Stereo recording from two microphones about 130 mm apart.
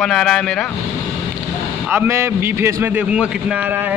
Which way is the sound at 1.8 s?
20° right (ahead or behind).